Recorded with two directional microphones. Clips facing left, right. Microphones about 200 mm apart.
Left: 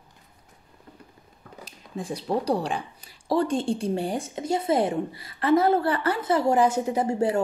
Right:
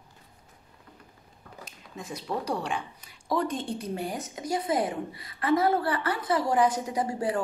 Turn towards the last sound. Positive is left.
turn(degrees=25)  # may be behind; listen again after turning